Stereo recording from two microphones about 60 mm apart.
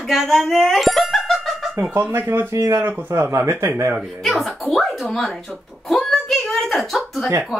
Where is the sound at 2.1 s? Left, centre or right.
Right.